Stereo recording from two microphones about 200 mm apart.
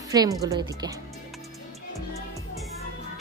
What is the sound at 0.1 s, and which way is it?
Speech, 20° right (ahead or behind).